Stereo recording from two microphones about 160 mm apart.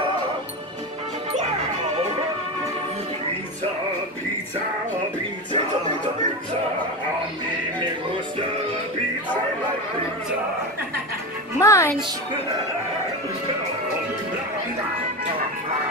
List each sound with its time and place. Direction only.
11.6 s speech: 20° left (ahead or behind)